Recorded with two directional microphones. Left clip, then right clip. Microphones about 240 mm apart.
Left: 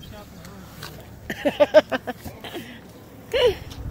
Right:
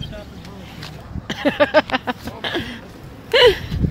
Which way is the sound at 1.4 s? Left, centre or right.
Centre.